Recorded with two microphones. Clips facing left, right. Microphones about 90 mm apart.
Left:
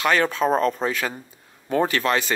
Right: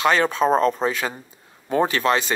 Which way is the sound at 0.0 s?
25° right (ahead or behind).